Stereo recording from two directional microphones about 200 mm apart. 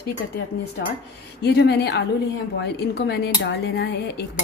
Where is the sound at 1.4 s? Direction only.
55° left (ahead or behind).